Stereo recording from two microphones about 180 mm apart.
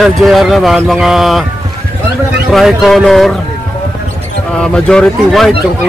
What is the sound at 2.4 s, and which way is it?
Speech, centre (ahead or behind).